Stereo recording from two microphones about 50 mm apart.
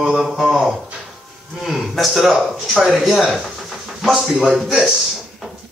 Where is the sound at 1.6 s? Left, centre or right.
Centre.